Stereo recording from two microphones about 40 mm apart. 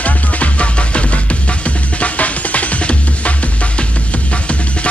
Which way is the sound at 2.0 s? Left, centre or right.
Left.